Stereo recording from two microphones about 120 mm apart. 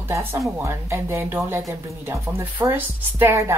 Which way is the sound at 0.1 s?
25° right (ahead or behind).